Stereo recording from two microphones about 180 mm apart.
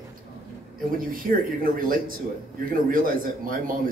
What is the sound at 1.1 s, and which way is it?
A man's voice, 50° right (ahead or behind).